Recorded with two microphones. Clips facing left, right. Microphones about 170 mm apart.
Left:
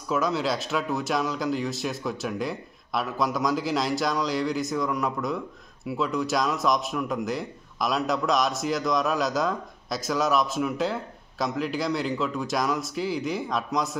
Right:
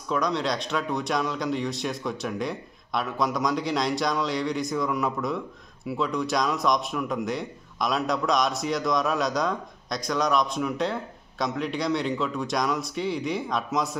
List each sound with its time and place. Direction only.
0.1 s speech: 5° left (ahead or behind)